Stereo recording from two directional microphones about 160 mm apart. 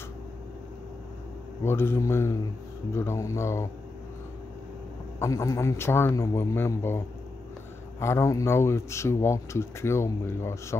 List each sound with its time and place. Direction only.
1.6 s speech: 15° left (ahead or behind)
5.2 s speech: 20° left (ahead or behind)
8.0 s speech: 15° left (ahead or behind)